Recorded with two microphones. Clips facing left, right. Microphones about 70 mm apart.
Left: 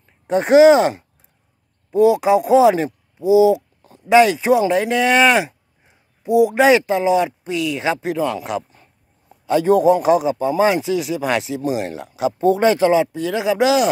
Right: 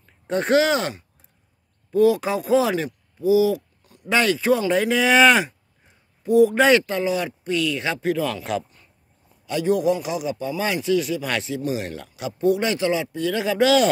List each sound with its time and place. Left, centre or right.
0.3 s speech: centre
4.6 s speech: centre
6.2 s speech: centre
9.5 s a man's voice: left
10.2 s speech: left